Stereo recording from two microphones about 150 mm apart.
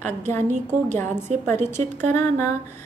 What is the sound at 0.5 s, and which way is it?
Speech, 55° right (ahead or behind).